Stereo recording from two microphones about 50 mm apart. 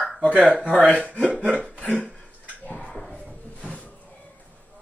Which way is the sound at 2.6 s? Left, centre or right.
Left.